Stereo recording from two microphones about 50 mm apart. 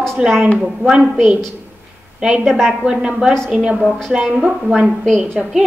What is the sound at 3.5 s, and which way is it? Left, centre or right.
Speech, right.